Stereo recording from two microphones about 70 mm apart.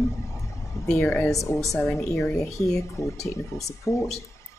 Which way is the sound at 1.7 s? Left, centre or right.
Left.